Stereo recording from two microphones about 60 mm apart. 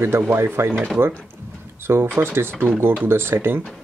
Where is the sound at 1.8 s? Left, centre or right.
Right.